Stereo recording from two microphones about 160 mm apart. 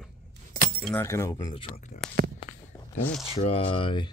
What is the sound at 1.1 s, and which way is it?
Speech, 20° left (ahead or behind).